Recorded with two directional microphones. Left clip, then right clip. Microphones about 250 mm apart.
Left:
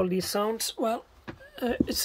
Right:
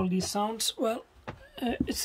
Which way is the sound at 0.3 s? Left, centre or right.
Centre.